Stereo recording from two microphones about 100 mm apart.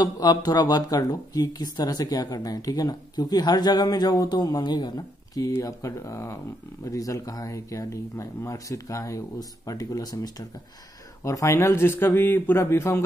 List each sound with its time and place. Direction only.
0.0 s speech: 40° left (ahead or behind)